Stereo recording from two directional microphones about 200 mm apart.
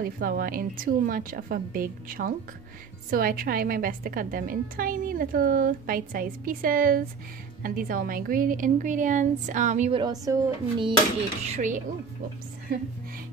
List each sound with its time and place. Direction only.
0.0 s a woman's voice: 45° right (ahead or behind)
10.2 s speech: 20° right (ahead or behind)
11.5 s a woman's voice: 40° right (ahead or behind)